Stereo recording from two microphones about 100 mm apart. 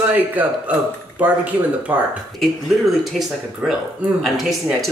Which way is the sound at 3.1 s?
5° right (ahead or behind).